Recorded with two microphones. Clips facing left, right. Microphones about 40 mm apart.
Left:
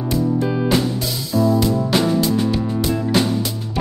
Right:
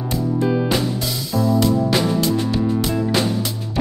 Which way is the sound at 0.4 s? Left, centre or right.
Centre.